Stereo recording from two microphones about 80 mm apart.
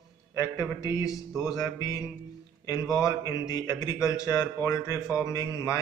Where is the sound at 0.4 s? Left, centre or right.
Left.